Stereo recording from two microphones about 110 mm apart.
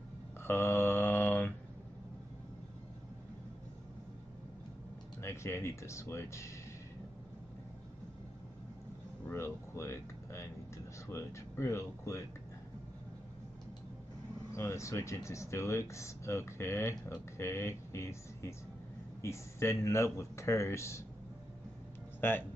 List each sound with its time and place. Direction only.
0.4 s mantra: 20° left (ahead or behind)
5.2 s speech: 25° left (ahead or behind)
9.3 s air conditioning: 25° left (ahead or behind)
11.1 s speech: 25° left (ahead or behind)
14.5 s speech: 25° left (ahead or behind)
22.2 s speech: 20° left (ahead or behind)